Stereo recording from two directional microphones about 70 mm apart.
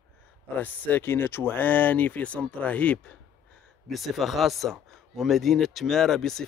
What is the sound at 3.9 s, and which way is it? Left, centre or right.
Speech, centre.